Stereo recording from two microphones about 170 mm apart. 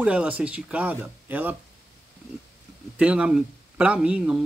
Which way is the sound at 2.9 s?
5° right (ahead or behind).